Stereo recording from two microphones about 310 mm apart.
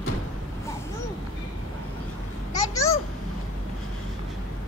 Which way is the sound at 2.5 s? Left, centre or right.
Centre.